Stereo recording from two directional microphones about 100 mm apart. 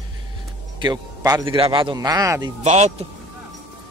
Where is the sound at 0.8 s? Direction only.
40° right (ahead or behind).